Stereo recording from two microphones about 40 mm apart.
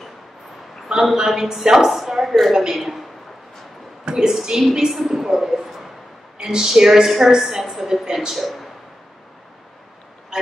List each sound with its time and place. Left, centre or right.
1.1 s a woman's voice: centre
4.0 s a woman's voice: centre
10.3 s a sound: centre